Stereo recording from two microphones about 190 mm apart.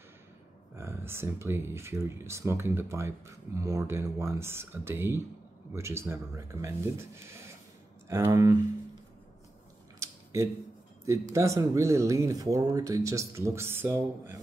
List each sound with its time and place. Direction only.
0.7 s speech: 15° right (ahead or behind)
9.9 s mechanisms: 15° right (ahead or behind)
11.1 s speech: 15° right (ahead or behind)